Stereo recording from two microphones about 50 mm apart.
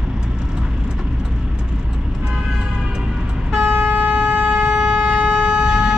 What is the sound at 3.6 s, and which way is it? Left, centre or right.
Shofar, right.